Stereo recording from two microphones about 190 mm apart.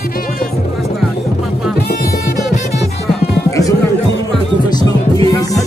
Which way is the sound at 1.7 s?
50° left (ahead or behind).